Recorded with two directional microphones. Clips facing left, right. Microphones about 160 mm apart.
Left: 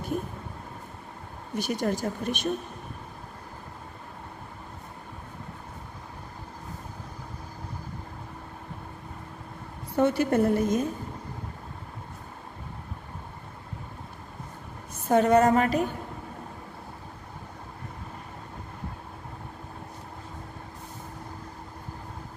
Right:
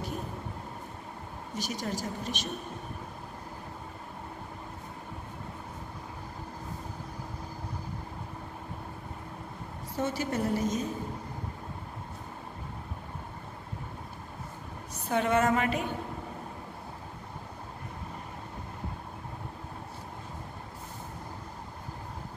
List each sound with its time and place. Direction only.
1.6 s a woman's voice: 55° left (ahead or behind)
9.9 s a woman's voice: 60° left (ahead or behind)
15.0 s a woman's voice: 40° left (ahead or behind)